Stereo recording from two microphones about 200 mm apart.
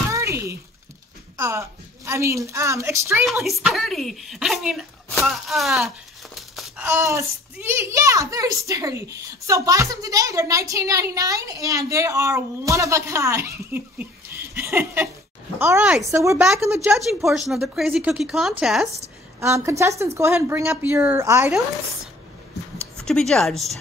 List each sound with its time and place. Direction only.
0.1 s a sound: 15° right (ahead or behind)
1.4 s a child's voice: 15° right (ahead or behind)
3.4 s speech: centre (ahead or behind)
5.2 s a sound: centre (ahead or behind)
6.9 s a child's voice: 15° right (ahead or behind)
17.5 s speech: centre (ahead or behind)
19.4 s a child's voice: 15° right (ahead or behind)
22.9 s speech: 5° left (ahead or behind)